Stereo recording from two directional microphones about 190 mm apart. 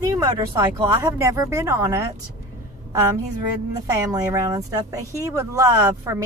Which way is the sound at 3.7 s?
20° right (ahead or behind).